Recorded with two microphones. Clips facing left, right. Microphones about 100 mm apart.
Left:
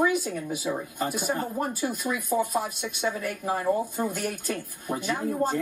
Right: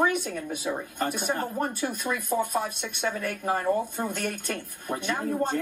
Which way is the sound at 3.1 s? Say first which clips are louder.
Right 1 dB; 50° right (ahead or behind).